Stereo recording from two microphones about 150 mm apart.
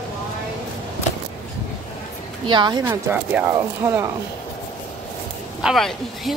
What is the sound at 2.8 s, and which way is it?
Speech, 15° right (ahead or behind).